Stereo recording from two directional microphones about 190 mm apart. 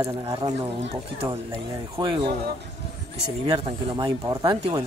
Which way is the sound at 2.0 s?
25° right (ahead or behind).